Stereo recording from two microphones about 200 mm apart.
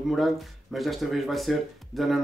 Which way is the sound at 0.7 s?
Centre (ahead or behind).